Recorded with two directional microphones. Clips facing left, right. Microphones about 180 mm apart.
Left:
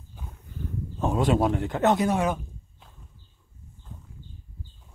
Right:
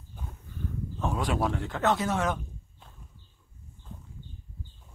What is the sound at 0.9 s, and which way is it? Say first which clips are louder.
A man's voice: left 7 dB; 20° left (ahead or behind).